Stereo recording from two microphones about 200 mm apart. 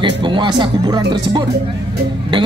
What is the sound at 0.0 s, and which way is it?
Speech, 25° right (ahead or behind).